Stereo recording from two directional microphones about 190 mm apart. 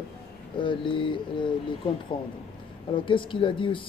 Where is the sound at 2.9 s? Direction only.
25° left (ahead or behind).